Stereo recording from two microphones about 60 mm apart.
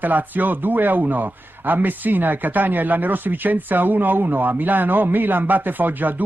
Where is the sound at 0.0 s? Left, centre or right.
Right.